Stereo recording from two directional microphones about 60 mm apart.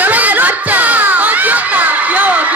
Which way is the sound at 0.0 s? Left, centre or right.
Right.